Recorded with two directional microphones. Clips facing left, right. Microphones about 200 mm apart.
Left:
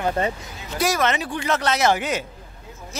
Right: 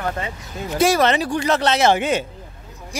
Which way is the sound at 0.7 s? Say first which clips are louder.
Right 5 dB; 30° right (ahead or behind).